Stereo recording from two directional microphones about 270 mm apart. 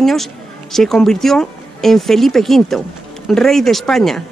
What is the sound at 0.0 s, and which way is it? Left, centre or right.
Speech, centre.